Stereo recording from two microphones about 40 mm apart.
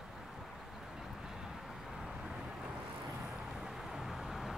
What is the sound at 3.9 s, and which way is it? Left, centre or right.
Vehicle, centre.